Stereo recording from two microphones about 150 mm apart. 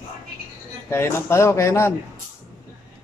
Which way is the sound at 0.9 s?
15° left (ahead or behind).